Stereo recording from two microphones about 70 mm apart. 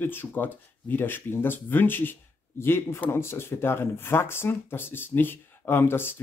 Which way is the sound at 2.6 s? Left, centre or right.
Left.